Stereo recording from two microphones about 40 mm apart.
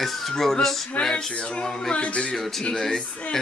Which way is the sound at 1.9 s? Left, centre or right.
Left.